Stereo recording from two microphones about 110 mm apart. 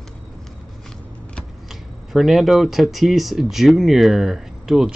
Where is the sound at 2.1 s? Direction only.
Centre (ahead or behind).